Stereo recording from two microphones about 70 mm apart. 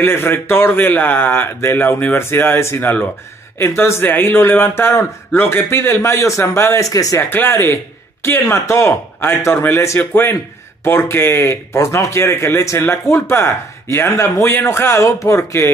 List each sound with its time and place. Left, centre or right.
0.0 s a man's voice: left
4.0 s a man's voice: left
6.9 s speech: left
7.2 s a man's voice: left
7.5 s a man's voice: left
15.0 s speech: left